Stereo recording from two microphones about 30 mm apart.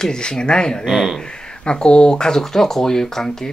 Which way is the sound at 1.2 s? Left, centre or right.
Left.